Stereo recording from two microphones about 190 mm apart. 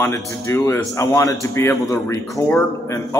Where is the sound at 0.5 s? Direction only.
15° left (ahead or behind).